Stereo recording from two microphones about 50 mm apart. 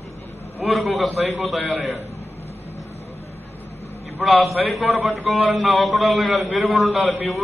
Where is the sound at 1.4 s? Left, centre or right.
Centre.